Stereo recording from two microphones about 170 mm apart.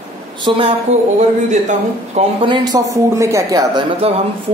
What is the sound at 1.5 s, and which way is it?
Speech, 40° right (ahead or behind).